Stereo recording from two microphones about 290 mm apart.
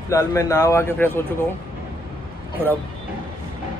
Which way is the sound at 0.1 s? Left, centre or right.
Centre.